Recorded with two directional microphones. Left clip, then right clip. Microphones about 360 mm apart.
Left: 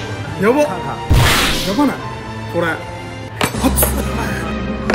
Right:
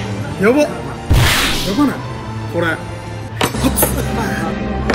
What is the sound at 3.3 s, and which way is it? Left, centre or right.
Music, centre.